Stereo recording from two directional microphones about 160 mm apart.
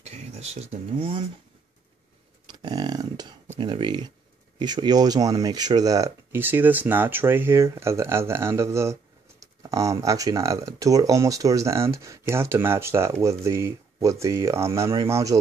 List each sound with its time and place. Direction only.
0.0 s speech: 40° right (ahead or behind)
2.6 s a sound: 25° right (ahead or behind)
3.5 s speech: 30° right (ahead or behind)